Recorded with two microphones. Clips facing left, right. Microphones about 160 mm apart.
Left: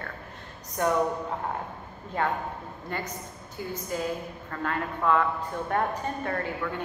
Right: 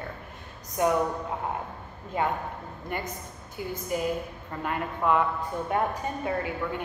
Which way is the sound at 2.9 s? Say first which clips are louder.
Right 1 dB; 15° right (ahead or behind).